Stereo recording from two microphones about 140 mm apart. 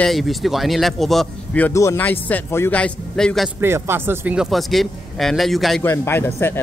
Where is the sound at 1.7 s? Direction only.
20° left (ahead or behind).